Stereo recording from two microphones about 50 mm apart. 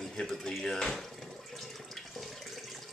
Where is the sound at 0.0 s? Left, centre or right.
Centre.